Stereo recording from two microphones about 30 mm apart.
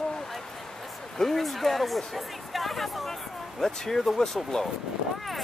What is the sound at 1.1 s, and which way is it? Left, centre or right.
Speech, centre.